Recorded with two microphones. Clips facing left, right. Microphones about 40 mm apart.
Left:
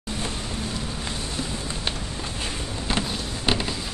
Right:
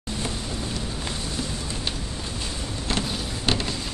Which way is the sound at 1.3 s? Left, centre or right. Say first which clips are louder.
Even; left.